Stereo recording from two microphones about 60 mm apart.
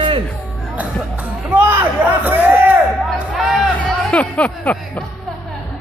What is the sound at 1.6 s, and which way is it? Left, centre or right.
Speech, right.